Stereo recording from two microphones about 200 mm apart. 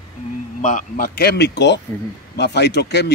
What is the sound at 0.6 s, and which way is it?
Speech, 40° left (ahead or behind).